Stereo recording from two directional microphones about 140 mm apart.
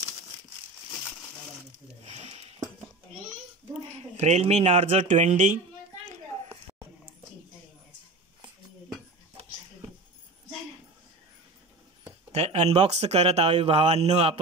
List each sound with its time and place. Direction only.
2.0 s a sound: 50° right (ahead or behind)
4.2 s speech: 50° right (ahead or behind)
12.3 s speech: 50° right (ahead or behind)